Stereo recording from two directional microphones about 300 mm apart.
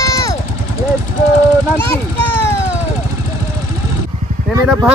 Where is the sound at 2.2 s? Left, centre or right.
Right.